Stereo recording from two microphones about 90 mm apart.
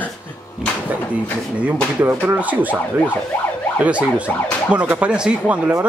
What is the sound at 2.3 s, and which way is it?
Speech, 15° right (ahead or behind).